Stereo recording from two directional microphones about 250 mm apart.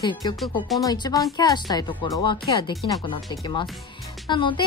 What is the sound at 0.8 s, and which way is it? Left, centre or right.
A woman's voice, centre.